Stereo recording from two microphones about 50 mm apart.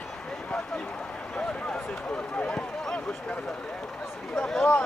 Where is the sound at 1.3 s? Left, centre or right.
Left.